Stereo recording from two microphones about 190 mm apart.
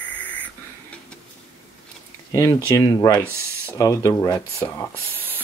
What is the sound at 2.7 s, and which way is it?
Speech, 20° left (ahead or behind).